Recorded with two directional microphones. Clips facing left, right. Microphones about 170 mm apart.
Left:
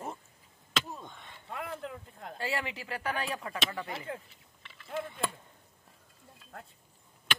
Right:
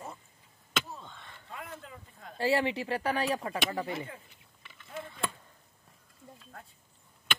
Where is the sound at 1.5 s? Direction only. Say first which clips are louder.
Left 6 dB; 65° left (ahead or behind).